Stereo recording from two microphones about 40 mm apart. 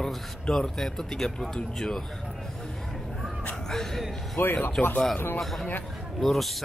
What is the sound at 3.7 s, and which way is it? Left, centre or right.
Speech, centre.